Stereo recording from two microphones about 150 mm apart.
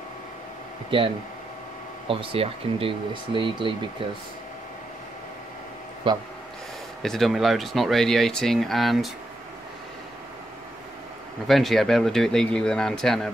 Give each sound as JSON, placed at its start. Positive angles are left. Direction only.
{"t": 0.8, "sound": "speech", "side_deg": -35}
{"t": 6.0, "sound": "speech", "side_deg": -35}
{"t": 7.0, "sound": "speech", "side_deg": 0}
{"t": 11.4, "sound": "speech", "side_deg": 0}